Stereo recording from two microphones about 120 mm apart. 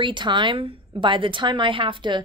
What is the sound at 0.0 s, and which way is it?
A woman's voice, 40° right (ahead or behind).